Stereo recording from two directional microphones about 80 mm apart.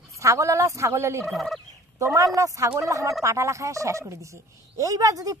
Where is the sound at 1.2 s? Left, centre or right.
Centre.